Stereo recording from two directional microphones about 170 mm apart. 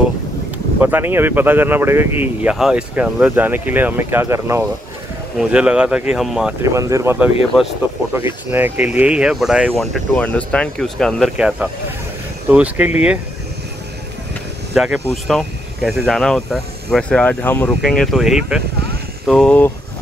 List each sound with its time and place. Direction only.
0.7 s speech: 10° right (ahead or behind)
6.6 s speech: 20° right (ahead or behind)
10.1 s speech: 10° left (ahead or behind); by 13.2 s 10° right (ahead or behind)
14.7 s speech: 5° right (ahead or behind)